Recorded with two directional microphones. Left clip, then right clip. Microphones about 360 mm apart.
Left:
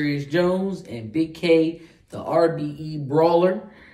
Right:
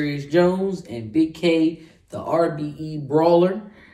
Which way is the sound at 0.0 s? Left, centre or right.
Centre.